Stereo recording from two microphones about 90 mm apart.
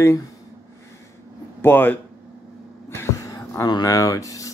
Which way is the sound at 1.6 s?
20° left (ahead or behind).